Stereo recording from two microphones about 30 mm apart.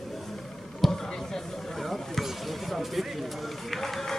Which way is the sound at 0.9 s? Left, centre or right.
Centre.